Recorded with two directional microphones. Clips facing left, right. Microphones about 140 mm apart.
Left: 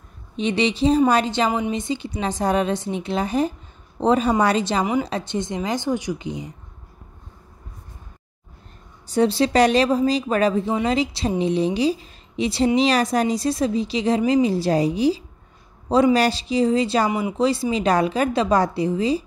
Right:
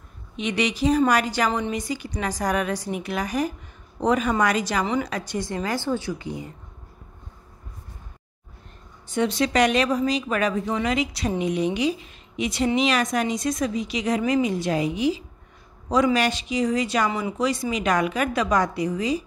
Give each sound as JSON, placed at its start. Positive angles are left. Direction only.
{"t": 0.4, "sound": "a woman's voice", "side_deg": 30}
{"t": 9.0, "sound": "a woman's voice", "side_deg": 35}